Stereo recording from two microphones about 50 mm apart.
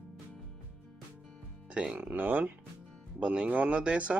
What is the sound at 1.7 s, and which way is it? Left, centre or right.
Speech, centre.